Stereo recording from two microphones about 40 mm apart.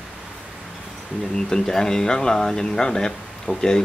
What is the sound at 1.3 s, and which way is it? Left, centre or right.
Speech, centre.